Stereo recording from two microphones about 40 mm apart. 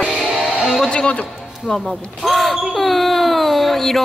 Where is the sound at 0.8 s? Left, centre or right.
Left.